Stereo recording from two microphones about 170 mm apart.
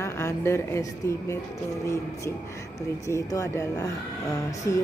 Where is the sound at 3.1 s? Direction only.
15° left (ahead or behind).